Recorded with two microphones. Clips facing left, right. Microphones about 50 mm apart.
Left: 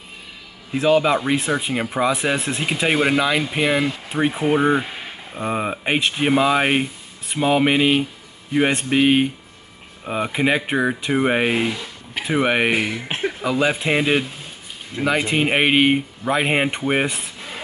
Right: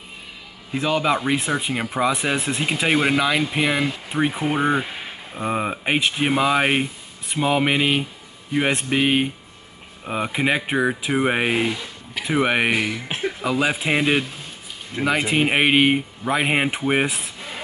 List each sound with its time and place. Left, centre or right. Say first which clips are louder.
0.7 s speech: left 4 dB; centre
12.9 s speech: left 2 dB; left
13.4 s speech: left 2 dB; centre